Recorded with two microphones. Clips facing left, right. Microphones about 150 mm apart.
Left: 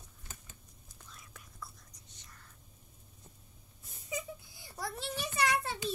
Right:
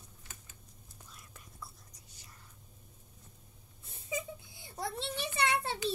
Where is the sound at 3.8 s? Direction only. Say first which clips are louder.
Right 1 dB; 25° right (ahead or behind).